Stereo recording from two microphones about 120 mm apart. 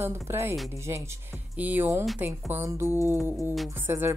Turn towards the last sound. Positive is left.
turn(degrees=-20)  # may be behind; listen again after turning